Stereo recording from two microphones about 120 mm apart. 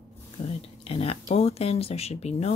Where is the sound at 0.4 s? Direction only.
75° left (ahead or behind).